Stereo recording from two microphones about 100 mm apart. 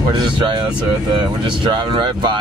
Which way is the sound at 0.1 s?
50° right (ahead or behind).